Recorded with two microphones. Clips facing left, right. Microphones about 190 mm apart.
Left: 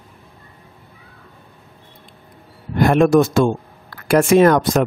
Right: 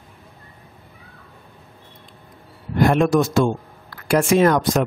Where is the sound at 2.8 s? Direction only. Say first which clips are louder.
Left 4 dB; 55° left (ahead or behind).